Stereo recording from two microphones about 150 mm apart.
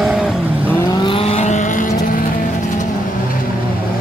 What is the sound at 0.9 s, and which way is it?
Vehicle, 35° left (ahead or behind).